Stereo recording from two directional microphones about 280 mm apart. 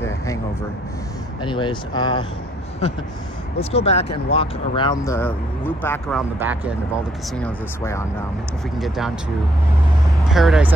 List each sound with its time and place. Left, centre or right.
1.4 s speech: centre
3.7 s speech: left; by 6.7 s centre
7.3 s speech: centre
10.3 s speech: centre